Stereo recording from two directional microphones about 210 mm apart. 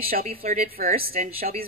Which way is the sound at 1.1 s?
45° right (ahead or behind).